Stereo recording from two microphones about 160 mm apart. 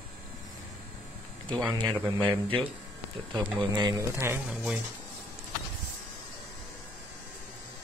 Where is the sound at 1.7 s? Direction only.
25° right (ahead or behind); by 4.8 s 5° right (ahead or behind).